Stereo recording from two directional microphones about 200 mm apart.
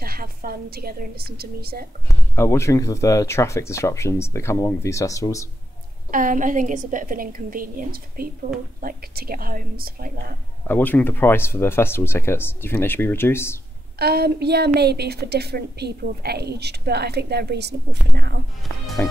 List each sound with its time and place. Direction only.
0.0 s a woman's voice: 45° right (ahead or behind)
2.0 s speech: 10° left (ahead or behind)
6.1 s a woman's voice: 40° right (ahead or behind)
10.7 s speech: 10° left (ahead or behind)
13.9 s a woman's voice: 55° right (ahead or behind)